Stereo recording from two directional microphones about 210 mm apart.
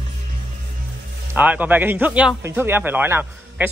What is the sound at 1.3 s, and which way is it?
Speech, 5° right (ahead or behind).